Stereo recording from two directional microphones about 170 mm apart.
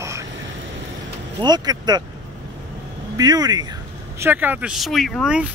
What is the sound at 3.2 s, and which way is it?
Speech, 25° right (ahead or behind).